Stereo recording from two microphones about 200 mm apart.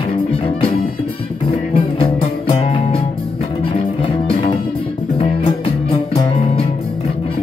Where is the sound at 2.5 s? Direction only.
25° left (ahead or behind).